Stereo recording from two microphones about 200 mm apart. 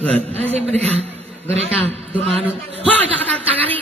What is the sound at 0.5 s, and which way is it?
A man's voice, 30° right (ahead or behind).